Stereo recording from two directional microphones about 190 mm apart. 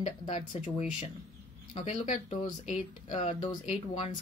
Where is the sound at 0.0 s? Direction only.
40° left (ahead or behind).